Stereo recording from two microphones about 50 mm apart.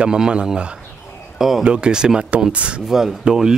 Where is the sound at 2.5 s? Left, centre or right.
Right.